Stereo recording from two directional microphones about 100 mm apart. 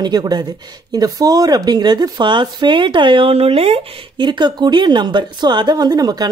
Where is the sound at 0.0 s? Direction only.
45° right (ahead or behind); by 4.0 s 75° right (ahead or behind).